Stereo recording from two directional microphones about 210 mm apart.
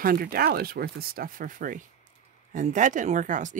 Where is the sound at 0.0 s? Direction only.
45° right (ahead or behind).